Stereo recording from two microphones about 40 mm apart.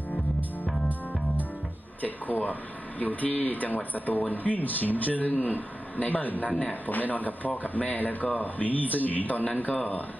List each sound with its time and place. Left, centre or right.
2.0 s speech: left